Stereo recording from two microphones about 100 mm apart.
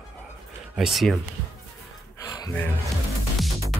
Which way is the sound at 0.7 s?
Centre (ahead or behind).